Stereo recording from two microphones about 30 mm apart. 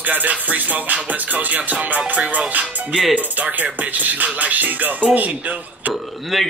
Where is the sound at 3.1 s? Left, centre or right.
Right.